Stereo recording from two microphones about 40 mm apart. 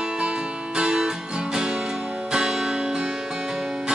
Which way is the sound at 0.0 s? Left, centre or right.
Centre.